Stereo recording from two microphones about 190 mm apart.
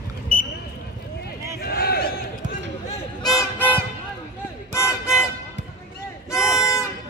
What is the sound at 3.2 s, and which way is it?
Music, 20° left (ahead or behind).